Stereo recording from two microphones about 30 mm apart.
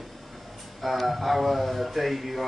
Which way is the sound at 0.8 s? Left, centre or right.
Centre.